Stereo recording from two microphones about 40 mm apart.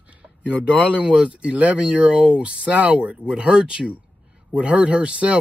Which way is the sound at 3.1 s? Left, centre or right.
Right.